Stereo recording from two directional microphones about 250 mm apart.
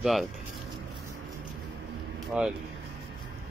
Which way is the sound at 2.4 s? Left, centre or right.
Centre.